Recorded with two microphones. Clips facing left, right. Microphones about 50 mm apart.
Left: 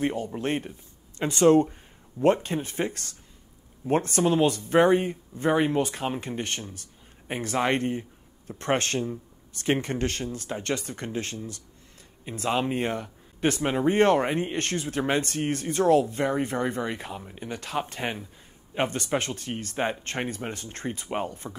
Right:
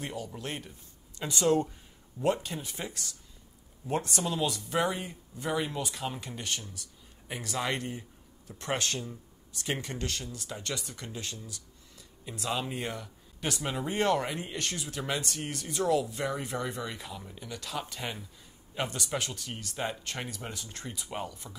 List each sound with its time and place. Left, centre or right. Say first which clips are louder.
0.0 s speech: left 10 dB; left